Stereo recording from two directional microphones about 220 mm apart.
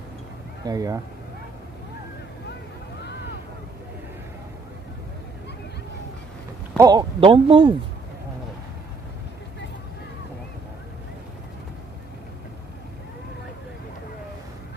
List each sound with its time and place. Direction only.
0.7 s speech: 15° right (ahead or behind)
6.8 s speech: 20° right (ahead or behind)